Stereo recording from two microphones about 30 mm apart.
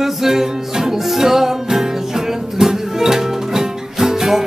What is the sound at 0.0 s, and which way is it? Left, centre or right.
Music, centre.